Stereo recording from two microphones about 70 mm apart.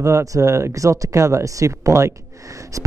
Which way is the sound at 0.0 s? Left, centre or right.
Right.